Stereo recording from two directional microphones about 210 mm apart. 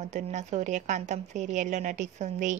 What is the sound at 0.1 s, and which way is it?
A woman's voice, 35° right (ahead or behind).